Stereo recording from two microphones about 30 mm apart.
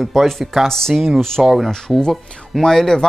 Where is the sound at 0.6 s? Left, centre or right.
Centre.